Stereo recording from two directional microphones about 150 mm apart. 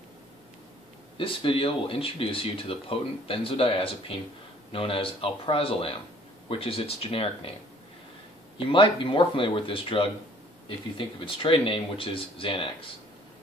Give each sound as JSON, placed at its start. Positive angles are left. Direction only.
{"t": 1.1, "sound": "speech", "side_deg": 35}
{"t": 8.5, "sound": "speech", "side_deg": 35}